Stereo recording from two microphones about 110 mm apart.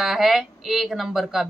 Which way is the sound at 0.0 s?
Centre (ahead or behind).